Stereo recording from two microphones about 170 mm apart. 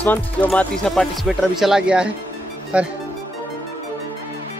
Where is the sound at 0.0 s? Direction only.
10° left (ahead or behind); by 2.9 s 5° right (ahead or behind).